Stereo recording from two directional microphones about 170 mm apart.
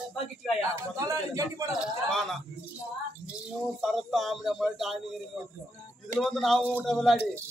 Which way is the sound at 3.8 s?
Centre (ahead or behind).